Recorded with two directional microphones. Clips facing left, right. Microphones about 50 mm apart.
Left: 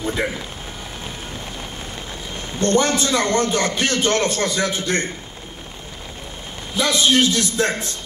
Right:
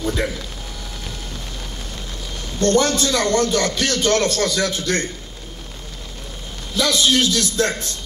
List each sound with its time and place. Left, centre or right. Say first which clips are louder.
2.6 s a man's voice: right 1 dB; left
6.7 s a man's voice: even; left